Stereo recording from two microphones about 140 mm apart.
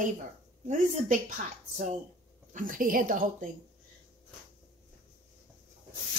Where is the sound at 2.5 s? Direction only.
75° right (ahead or behind).